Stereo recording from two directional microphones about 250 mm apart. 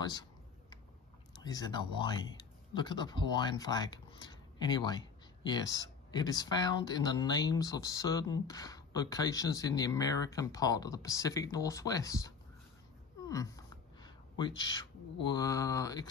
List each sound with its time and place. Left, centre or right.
0.0 s speech: centre
1.4 s speech: centre
13.3 s a sound: centre
15.2 s speech: centre